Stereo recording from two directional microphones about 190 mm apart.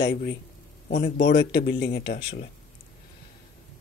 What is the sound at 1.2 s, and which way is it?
Speech, 65° left (ahead or behind).